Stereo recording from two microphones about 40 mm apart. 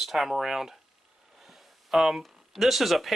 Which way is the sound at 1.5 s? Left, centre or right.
Centre.